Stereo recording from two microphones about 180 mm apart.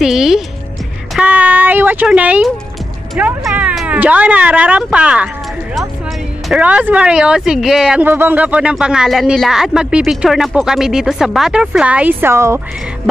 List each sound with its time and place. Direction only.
0.0 s speech: centre (ahead or behind)
6.5 s speech: 10° right (ahead or behind)